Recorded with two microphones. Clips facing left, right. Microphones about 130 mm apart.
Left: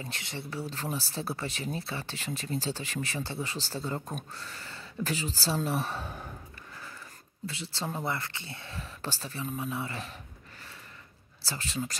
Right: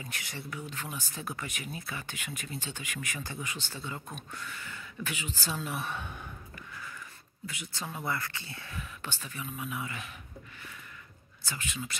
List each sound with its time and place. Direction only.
0.0 s speech: 25° left (ahead or behind)
7.4 s speech: 30° left (ahead or behind)
11.4 s speech: 35° left (ahead or behind)